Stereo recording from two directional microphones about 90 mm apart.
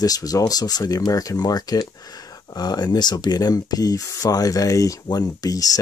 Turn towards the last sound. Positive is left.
turn(degrees=45)  # may be behind; listen again after turning